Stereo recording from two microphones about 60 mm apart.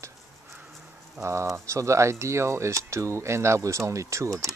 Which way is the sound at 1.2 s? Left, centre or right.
Right.